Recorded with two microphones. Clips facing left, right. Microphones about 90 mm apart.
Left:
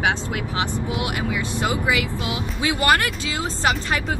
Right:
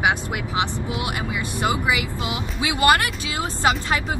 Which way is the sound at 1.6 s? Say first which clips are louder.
Right 1 dB; 20° right (ahead or behind).